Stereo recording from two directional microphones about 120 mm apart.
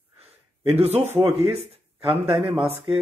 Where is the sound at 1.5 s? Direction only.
55° right (ahead or behind).